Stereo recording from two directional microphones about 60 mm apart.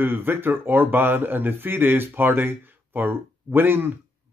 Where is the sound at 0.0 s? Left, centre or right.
Right.